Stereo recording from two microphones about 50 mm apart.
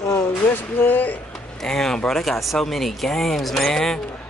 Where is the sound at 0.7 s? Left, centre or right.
Left.